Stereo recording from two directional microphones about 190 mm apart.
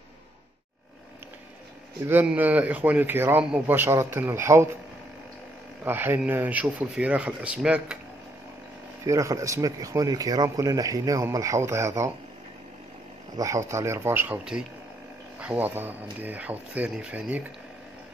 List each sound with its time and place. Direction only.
2.0 s speech: 10° right (ahead or behind)
5.9 s speech: 10° right (ahead or behind)
9.0 s speech: 15° right (ahead or behind)
13.4 s speech: 15° right (ahead or behind)